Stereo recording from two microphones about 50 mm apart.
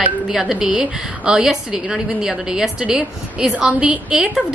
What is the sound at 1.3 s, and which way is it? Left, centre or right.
A woman's voice, centre.